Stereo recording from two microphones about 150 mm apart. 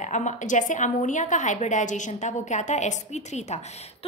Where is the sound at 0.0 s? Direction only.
55° left (ahead or behind).